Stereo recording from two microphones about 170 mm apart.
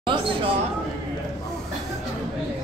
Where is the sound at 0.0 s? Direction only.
30° right (ahead or behind).